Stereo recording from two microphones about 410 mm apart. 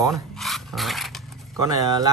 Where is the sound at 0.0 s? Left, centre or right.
Centre.